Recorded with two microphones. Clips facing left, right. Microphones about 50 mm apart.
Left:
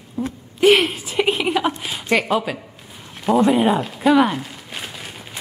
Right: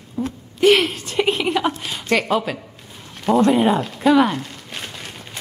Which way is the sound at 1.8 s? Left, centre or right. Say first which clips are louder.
Even; centre.